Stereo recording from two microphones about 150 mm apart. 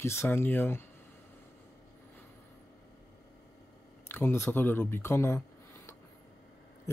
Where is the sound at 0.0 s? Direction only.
15° left (ahead or behind).